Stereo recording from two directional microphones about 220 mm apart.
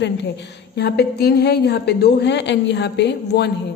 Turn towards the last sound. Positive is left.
turn(degrees=50)  # may be behind; listen again after turning